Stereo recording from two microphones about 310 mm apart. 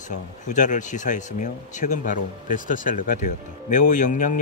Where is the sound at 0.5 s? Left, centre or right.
Left.